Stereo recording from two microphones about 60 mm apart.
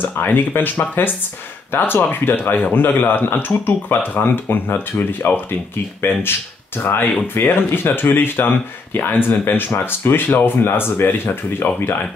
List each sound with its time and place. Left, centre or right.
0.0 s speech: left
6.8 s speech: left